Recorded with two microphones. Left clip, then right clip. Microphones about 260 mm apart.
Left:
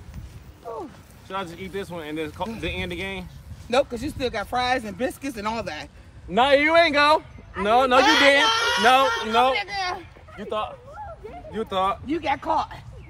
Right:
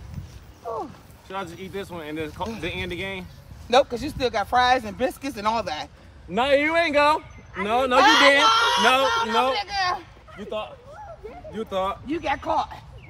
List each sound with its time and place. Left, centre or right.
1.3 s speech: centre
3.7 s speech: centre
6.3 s speech: centre
8.0 s speech: centre
11.5 s speech: centre
12.1 s speech: centre